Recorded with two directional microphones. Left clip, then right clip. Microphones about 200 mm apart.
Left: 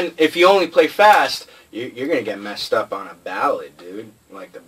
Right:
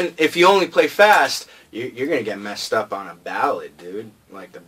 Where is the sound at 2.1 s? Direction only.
30° right (ahead or behind).